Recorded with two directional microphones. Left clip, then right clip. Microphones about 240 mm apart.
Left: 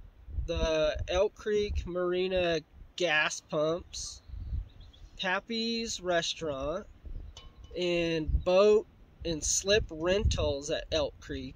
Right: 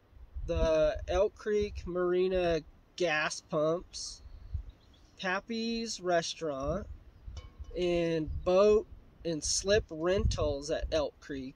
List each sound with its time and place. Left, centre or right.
0.5 s speech: centre
5.1 s speech: centre